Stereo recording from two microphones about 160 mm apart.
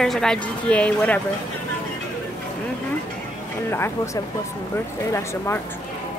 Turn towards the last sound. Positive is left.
turn(degrees=15)  # may be behind; listen again after turning